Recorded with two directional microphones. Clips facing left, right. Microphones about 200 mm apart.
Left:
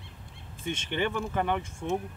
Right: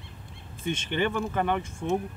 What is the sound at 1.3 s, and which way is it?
Speech, 10° left (ahead or behind).